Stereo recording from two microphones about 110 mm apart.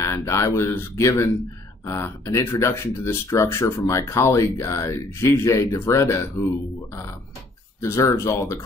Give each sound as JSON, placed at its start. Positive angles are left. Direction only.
{"t": 0.0, "sound": "speech", "side_deg": 25}